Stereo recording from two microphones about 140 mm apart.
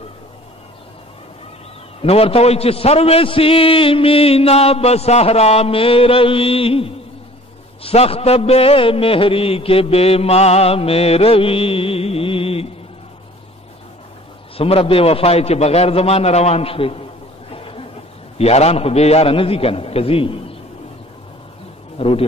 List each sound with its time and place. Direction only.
2.0 s a man's voice: 45° left (ahead or behind)
14.6 s a man's voice: 45° left (ahead or behind)
17.5 s a sound: 40° left (ahead or behind)
18.4 s a man's voice: 50° left (ahead or behind)
21.9 s a man's voice: 45° left (ahead or behind)